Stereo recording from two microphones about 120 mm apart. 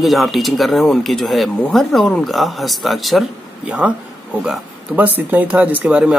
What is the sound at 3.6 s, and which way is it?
Speech, 10° right (ahead or behind).